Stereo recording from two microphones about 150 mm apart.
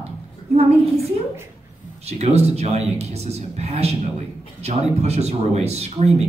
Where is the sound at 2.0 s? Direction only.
45° right (ahead or behind).